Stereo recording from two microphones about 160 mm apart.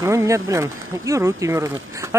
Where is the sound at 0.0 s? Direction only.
20° right (ahead or behind).